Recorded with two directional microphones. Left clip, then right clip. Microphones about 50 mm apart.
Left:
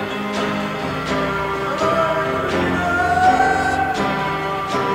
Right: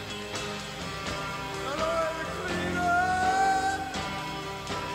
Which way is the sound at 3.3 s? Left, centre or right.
Left.